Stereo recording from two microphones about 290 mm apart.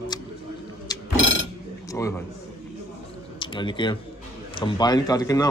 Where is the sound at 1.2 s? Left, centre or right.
Left.